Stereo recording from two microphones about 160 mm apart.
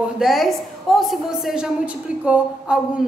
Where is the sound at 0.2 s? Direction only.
Centre (ahead or behind).